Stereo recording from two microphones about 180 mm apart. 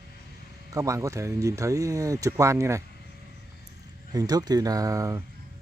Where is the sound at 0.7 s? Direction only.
15° right (ahead or behind).